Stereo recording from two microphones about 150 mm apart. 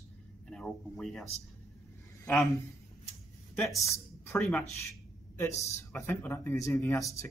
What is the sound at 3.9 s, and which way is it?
Speech, 15° left (ahead or behind).